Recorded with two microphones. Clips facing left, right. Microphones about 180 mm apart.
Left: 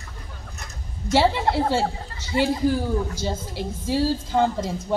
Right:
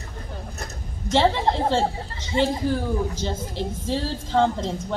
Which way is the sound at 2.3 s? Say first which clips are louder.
Even; 25° right (ahead or behind).